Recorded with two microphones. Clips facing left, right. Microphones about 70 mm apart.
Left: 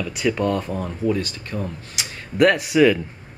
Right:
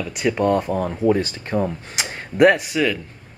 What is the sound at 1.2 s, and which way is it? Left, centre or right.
Speech, right.